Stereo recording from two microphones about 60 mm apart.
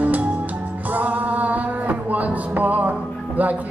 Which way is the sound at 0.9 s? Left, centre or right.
Right.